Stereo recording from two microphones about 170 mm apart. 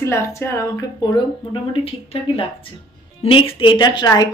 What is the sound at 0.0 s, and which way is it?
Speech, 15° left (ahead or behind).